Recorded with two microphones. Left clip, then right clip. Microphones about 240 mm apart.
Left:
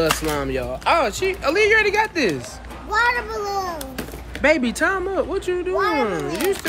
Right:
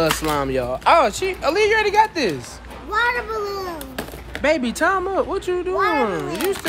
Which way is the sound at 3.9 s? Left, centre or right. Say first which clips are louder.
Right 2 dB; centre.